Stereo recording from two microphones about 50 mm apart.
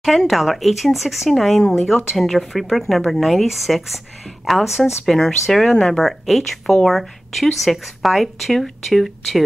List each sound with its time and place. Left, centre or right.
0.3 s speech: centre
5.0 s speech: centre